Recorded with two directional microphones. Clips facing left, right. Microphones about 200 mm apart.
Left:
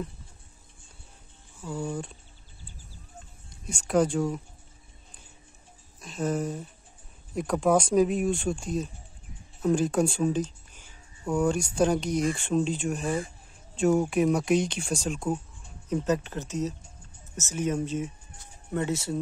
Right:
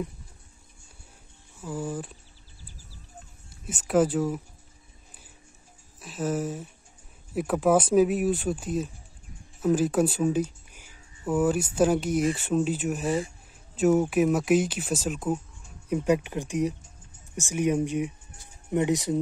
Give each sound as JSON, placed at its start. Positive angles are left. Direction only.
{"t": 1.6, "sound": "speech", "side_deg": -5}
{"t": 3.6, "sound": "speech", "side_deg": -5}
{"t": 5.9, "sound": "speech", "side_deg": -5}